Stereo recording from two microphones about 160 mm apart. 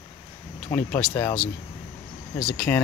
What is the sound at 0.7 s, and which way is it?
Speech, 10° left (ahead or behind).